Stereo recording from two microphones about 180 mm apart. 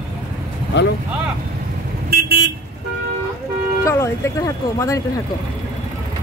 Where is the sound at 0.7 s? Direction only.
75° left (ahead or behind).